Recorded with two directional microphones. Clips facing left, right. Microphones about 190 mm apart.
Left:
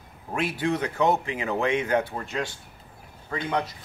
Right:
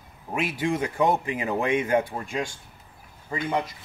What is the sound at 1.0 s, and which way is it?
Speech, 15° right (ahead or behind).